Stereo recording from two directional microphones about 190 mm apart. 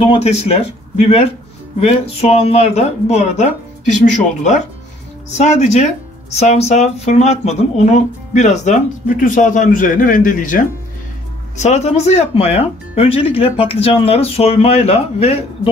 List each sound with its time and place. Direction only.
0.0 s speech: 30° left (ahead or behind)